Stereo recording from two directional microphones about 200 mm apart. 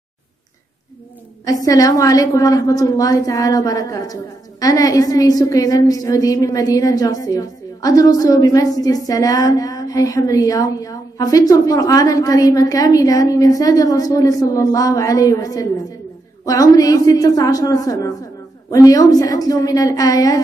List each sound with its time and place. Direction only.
1.4 s a woman's voice: 15° left (ahead or behind)